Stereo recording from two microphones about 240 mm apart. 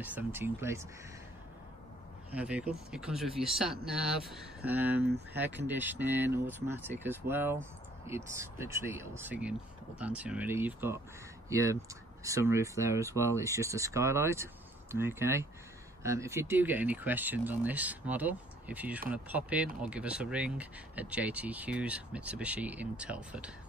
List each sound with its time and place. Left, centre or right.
0.0 s speech: centre
2.3 s speech: centre